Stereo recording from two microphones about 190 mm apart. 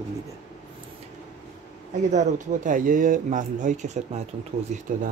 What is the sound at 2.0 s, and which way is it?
Speech, 40° right (ahead or behind).